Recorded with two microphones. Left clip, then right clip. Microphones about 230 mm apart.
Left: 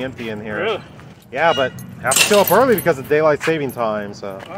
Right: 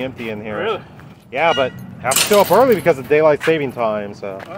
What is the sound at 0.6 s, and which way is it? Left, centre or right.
Speech, centre.